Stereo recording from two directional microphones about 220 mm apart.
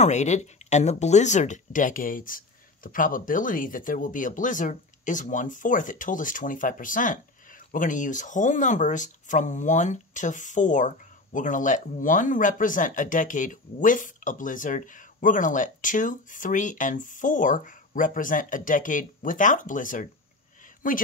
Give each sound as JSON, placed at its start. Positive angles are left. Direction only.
{"t": 0.0, "sound": "speech", "side_deg": 30}